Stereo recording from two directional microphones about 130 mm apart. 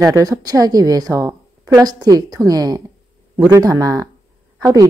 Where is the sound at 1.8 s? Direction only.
30° right (ahead or behind).